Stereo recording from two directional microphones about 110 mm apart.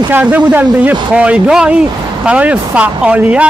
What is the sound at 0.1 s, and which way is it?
Speech, 15° right (ahead or behind).